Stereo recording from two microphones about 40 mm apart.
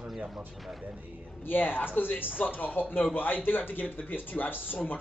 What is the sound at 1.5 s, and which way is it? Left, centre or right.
Speech, left.